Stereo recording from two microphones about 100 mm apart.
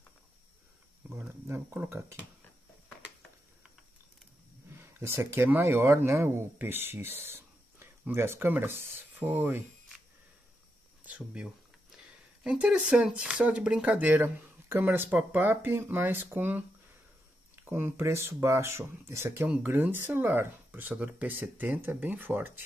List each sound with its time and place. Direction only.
1.0 s a sound: 20° right (ahead or behind)
1.5 s speech: 20° right (ahead or behind)
4.7 s speech: 25° right (ahead or behind)
11.1 s speech: 10° right (ahead or behind)
17.6 s speech: 25° right (ahead or behind)